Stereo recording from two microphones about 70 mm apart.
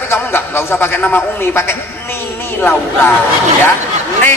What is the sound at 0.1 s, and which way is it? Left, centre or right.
A man's voice, left.